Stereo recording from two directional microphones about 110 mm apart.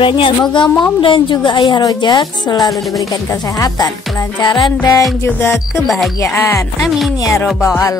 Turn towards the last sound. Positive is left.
turn(degrees=30)  # may be behind; listen again after turning